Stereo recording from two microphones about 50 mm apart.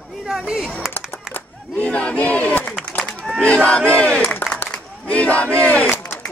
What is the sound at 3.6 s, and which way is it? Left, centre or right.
Battle cry, left.